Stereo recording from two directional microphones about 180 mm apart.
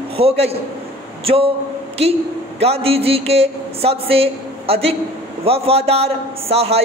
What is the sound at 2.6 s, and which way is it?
A man's voice, 35° right (ahead or behind).